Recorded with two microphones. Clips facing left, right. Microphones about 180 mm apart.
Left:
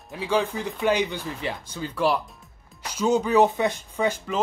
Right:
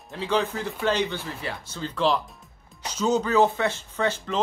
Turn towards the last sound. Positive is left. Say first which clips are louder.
# left 1 dB
turn(degrees=10)  # may be behind; listen again after turning